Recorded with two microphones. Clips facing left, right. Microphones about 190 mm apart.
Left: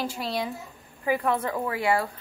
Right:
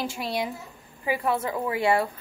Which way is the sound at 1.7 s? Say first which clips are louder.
Right 3 dB; 25° right (ahead or behind).